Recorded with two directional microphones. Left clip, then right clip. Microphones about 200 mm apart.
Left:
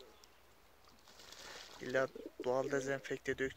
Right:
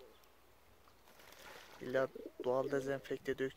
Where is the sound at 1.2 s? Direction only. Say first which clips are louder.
Left 3 dB; centre (ahead or behind).